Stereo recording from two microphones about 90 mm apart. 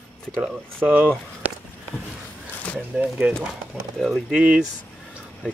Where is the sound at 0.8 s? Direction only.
25° right (ahead or behind).